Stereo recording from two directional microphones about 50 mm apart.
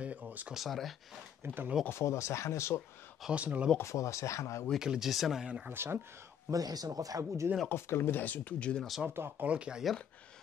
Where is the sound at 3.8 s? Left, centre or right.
Left.